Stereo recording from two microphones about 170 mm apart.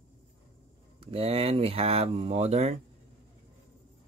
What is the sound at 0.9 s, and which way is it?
Speech, 35° right (ahead or behind).